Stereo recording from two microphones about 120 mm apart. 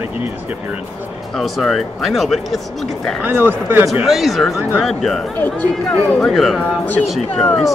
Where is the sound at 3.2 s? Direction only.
15° right (ahead or behind).